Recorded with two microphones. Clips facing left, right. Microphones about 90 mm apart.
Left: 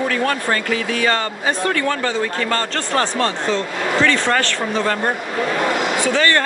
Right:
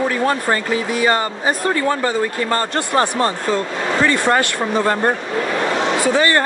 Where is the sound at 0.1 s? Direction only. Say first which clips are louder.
Right 2 dB; 20° right (ahead or behind).